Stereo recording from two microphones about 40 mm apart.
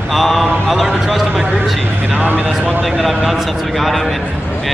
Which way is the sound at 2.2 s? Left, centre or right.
Right.